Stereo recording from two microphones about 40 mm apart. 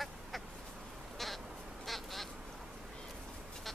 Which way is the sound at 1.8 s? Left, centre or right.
Centre.